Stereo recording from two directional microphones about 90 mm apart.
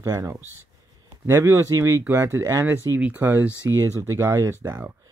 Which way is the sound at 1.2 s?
30° right (ahead or behind).